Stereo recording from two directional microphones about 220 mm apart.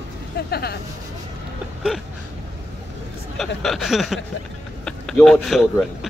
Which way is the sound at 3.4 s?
Centre (ahead or behind).